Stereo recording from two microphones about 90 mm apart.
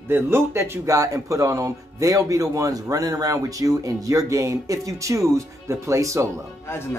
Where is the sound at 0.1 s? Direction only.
30° right (ahead or behind).